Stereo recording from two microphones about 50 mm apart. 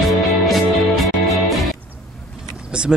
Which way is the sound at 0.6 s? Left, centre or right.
Centre.